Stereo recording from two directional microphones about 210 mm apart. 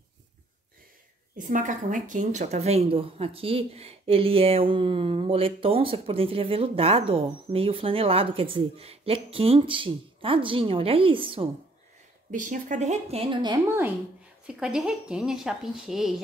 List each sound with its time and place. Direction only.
1.3 s speech: 40° right (ahead or behind)
12.3 s a woman's voice: 40° right (ahead or behind); by 13.6 s 20° right (ahead or behind)
14.5 s speech: 5° right (ahead or behind)